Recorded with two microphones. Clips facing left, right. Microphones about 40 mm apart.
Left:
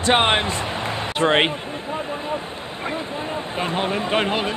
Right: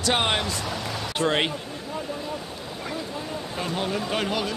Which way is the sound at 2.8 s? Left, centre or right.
Left.